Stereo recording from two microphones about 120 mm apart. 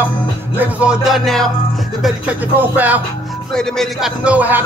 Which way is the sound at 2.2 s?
15° right (ahead or behind).